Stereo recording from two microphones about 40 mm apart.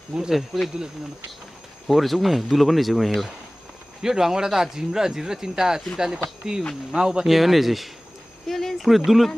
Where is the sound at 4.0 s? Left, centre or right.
Centre.